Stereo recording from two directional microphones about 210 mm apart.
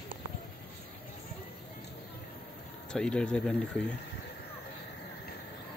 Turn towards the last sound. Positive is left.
turn(degrees=5)  # may be behind; listen again after turning